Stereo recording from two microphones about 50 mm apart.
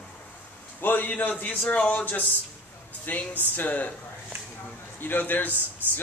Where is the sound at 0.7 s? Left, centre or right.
Left.